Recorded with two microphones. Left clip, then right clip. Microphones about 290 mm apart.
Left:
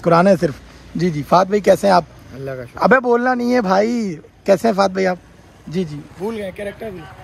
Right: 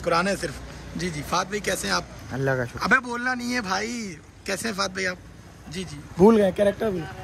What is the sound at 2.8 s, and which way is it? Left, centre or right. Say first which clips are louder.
Speech: left 11 dB; centre.